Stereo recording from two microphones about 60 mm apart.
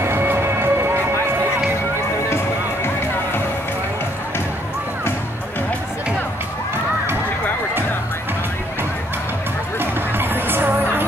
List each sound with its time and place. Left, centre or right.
0.0 s music: right
2.2 s music: left
9.8 s music: right